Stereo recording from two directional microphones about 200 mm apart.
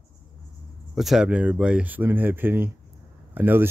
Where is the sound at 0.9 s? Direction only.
Centre (ahead or behind).